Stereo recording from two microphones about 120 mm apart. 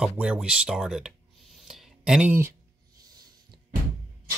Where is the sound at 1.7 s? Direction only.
5° right (ahead or behind).